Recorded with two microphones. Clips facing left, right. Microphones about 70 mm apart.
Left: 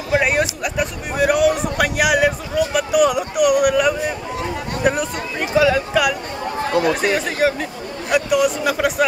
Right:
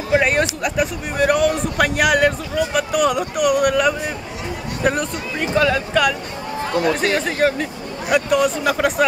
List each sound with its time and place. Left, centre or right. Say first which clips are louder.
0.2 s a man's voice: right 1 dB; centre